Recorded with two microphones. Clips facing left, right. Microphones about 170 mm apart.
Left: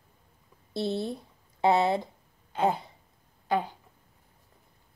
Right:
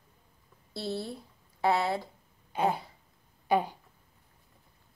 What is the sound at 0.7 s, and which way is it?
Speech, 20° left (ahead or behind).